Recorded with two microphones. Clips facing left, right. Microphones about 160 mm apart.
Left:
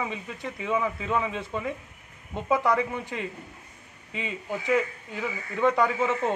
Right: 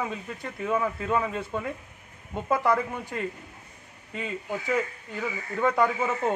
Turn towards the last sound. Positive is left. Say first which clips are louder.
# even
turn(degrees=-5)  # may be behind; listen again after turning